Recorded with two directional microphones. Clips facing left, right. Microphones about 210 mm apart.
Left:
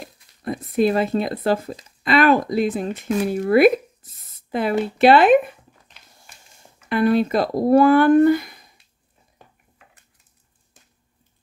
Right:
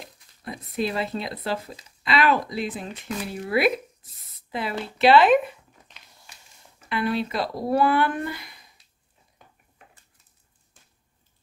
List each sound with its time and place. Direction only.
0.0 s speech: 50° left (ahead or behind)
6.9 s speech: 50° left (ahead or behind)